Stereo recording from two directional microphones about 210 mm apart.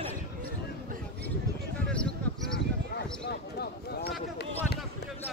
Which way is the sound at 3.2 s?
50° left (ahead or behind).